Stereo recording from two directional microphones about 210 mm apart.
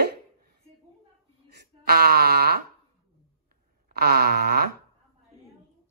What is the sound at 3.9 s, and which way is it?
Speech, 45° right (ahead or behind).